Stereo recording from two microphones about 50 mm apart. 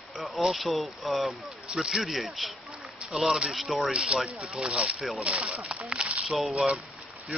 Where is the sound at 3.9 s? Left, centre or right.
Right.